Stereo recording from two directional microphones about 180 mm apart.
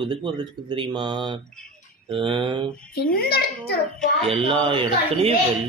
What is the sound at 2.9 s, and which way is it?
Speech, 60° left (ahead or behind).